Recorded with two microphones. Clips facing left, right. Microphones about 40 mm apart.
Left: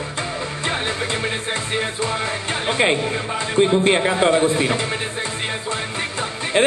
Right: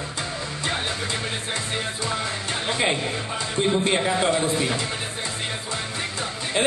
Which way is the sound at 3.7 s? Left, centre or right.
Left.